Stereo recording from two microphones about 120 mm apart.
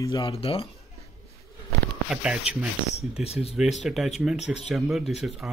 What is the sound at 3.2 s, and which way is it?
Speech, 60° left (ahead or behind).